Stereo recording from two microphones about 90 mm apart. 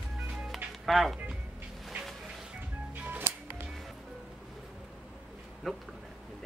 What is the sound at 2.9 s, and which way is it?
Music, 20° right (ahead or behind).